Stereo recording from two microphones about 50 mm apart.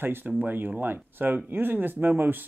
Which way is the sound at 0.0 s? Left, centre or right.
Right.